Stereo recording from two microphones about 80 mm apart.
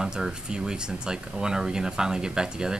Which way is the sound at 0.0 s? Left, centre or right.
Centre.